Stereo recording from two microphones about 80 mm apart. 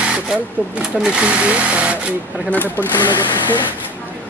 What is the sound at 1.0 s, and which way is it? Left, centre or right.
Speech, centre.